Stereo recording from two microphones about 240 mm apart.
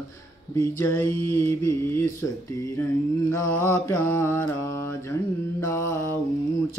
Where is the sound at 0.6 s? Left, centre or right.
Centre.